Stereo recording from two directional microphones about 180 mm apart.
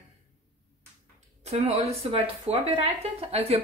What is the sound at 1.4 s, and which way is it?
Speech, 35° right (ahead or behind).